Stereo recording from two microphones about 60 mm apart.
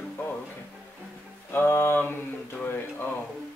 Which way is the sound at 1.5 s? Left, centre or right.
Left.